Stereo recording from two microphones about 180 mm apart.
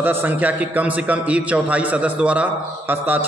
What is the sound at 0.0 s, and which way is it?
A man's voice, 10° right (ahead or behind).